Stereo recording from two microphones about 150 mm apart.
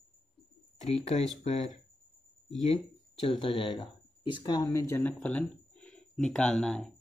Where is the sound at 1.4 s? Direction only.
50° left (ahead or behind).